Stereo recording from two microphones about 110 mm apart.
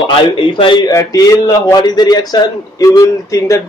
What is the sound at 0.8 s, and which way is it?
Speech, 30° left (ahead or behind).